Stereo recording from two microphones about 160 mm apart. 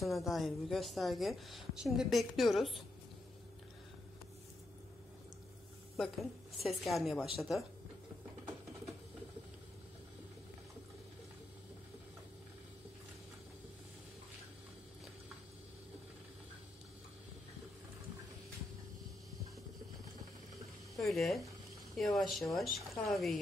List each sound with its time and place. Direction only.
0.0 s a woman's voice: centre (ahead or behind)
5.9 s a woman's voice: centre (ahead or behind)
20.9 s a woman's voice: centre (ahead or behind)